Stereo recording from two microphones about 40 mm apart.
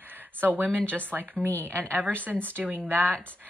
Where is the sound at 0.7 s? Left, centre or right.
Left.